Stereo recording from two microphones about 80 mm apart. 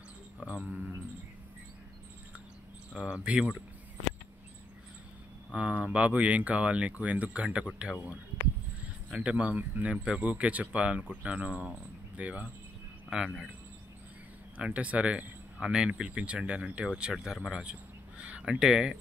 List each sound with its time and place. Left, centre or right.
0.4 s speech: centre
2.9 s speech: centre
5.5 s speech: centre
9.1 s speech: centre
14.6 s speech: centre